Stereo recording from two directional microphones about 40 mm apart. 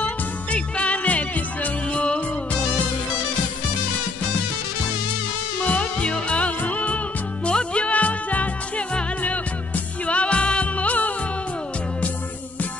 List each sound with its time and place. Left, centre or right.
0.0 s music: left
1.9 s music of bollywood: left
5.7 s music: left
10.0 s music: left